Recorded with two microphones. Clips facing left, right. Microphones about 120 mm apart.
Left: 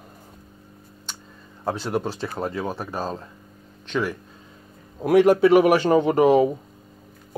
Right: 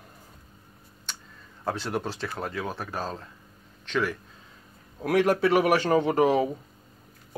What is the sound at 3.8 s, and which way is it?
Speech, 5° left (ahead or behind).